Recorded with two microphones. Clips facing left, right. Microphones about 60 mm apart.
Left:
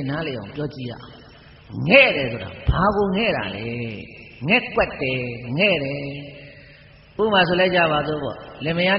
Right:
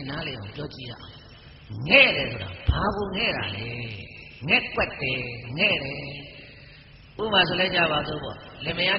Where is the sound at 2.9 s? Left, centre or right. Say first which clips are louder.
Left 9 dB; left.